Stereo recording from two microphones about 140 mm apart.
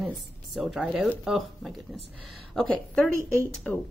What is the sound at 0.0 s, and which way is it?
Speech, centre (ahead or behind).